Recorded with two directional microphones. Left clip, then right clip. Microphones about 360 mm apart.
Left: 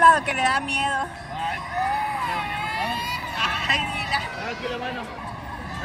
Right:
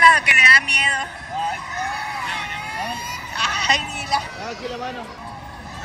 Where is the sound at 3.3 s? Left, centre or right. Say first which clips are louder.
Right 5 dB; centre.